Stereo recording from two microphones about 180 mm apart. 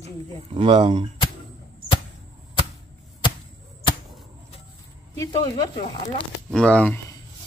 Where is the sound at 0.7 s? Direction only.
25° right (ahead or behind).